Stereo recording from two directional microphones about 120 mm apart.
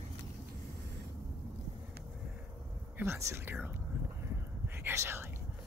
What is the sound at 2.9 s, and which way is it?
Speech, 20° right (ahead or behind).